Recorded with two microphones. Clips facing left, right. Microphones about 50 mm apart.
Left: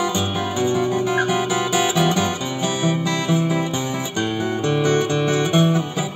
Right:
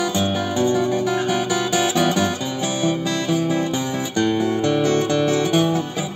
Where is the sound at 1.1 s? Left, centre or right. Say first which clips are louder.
Left 1 dB; left.